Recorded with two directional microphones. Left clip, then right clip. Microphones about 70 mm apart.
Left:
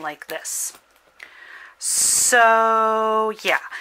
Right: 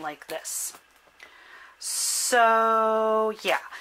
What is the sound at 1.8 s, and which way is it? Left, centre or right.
Speech, left.